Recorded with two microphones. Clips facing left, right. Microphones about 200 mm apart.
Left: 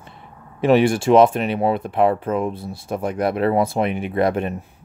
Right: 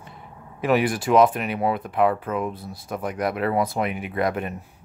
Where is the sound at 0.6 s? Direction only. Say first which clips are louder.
Left 6 dB; 25° left (ahead or behind).